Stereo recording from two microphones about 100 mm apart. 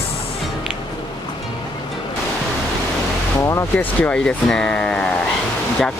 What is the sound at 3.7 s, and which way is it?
Speech, 15° left (ahead or behind).